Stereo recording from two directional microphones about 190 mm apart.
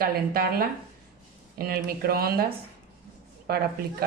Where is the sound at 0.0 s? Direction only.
55° right (ahead or behind).